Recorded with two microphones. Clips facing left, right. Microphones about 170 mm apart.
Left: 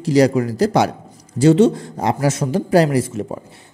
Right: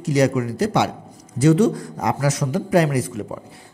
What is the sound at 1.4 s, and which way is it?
A man's voice, 25° left (ahead or behind).